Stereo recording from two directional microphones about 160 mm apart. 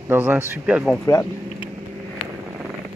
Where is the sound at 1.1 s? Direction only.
20° left (ahead or behind).